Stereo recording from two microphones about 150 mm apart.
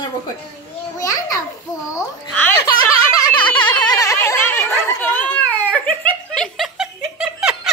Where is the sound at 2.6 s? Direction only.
25° left (ahead or behind).